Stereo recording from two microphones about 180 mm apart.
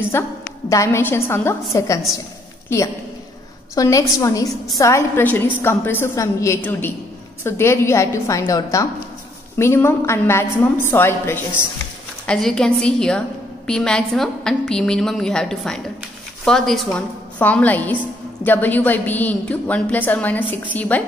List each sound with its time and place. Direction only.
0.1 s a woman's voice: 15° left (ahead or behind)
12.3 s a woman's voice: centre (ahead or behind)